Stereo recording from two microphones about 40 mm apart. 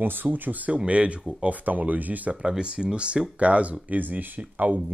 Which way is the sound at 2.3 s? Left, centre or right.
Right.